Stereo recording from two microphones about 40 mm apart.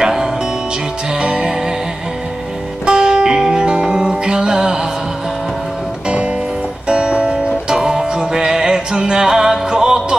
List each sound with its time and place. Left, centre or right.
0.0 s music: centre
2.8 s music: right
6.0 s music: right
6.9 s music: right